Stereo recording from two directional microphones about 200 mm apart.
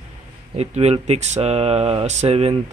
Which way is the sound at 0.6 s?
30° right (ahead or behind).